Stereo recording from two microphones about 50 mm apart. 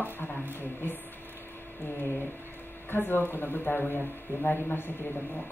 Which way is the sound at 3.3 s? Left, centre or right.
Left.